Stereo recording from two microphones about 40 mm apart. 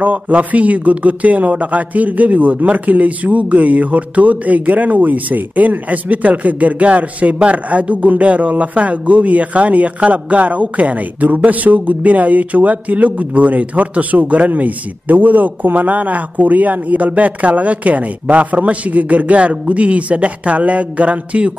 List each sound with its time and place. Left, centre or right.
0.0 s a man's voice: right